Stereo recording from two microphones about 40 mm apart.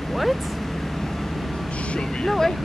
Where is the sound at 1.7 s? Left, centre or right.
Left.